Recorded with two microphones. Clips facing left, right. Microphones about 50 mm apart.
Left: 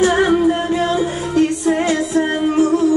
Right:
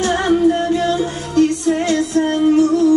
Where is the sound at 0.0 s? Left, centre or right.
Centre.